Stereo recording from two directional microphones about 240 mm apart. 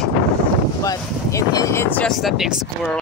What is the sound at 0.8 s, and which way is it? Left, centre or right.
Speech, centre.